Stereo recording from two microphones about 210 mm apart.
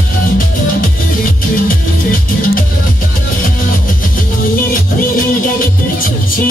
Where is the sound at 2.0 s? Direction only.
40° left (ahead or behind).